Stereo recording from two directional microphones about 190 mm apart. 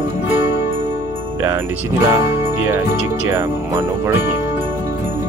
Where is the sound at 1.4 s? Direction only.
15° right (ahead or behind).